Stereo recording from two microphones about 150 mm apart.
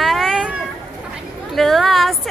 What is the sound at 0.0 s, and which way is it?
Cat, centre (ahead or behind).